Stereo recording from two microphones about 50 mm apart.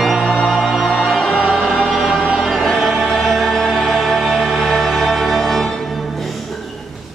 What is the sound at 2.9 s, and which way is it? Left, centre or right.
Music, centre.